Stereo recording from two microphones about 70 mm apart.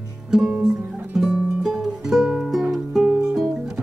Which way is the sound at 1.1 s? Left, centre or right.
Centre.